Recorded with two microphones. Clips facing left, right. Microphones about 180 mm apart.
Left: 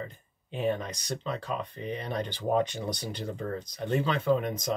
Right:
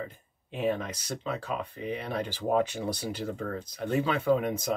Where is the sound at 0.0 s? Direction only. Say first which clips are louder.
Right 1 dB; 5° right (ahead or behind).